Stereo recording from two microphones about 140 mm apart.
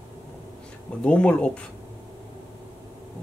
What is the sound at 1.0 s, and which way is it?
Speech, 10° left (ahead or behind).